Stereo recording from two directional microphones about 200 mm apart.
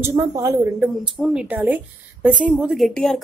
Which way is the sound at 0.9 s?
Centre (ahead or behind).